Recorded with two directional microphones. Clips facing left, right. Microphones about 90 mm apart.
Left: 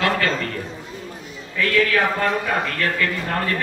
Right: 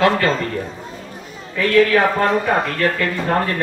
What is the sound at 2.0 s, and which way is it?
Speech, 35° right (ahead or behind).